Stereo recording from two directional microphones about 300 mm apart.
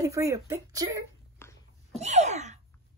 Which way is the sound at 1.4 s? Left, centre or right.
Centre.